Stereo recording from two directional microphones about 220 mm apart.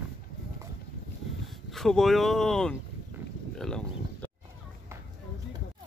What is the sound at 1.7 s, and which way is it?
Speech, centre (ahead or behind).